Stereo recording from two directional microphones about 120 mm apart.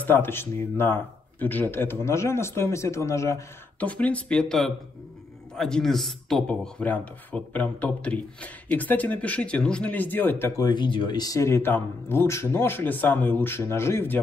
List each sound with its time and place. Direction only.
0.0 s speech: 20° left (ahead or behind)
3.8 s a man's voice: 10° left (ahead or behind)
10.5 s speech: 35° left (ahead or behind); by 14.2 s 20° left (ahead or behind)